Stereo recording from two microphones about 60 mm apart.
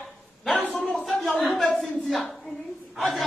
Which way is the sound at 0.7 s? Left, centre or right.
Centre.